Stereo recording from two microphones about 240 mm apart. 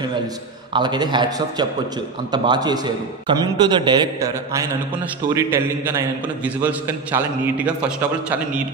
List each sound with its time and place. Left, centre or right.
0.7 s a man's voice: centre